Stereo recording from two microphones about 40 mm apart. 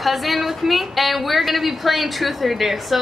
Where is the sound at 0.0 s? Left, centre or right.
Centre.